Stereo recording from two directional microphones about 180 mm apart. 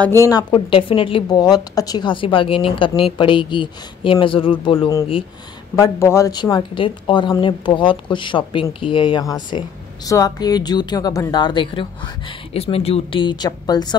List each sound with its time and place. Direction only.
0.2 s speech: 20° left (ahead or behind)
5.8 s speech: 15° left (ahead or behind)